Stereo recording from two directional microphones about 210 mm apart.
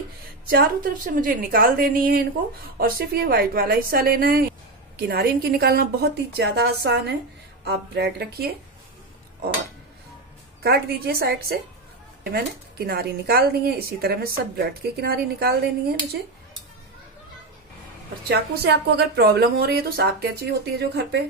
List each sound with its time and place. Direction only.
0.5 s a woman's voice: 45° right (ahead or behind)
10.6 s a woman's voice: 50° right (ahead or behind)
18.3 s a woman's voice: 50° right (ahead or behind)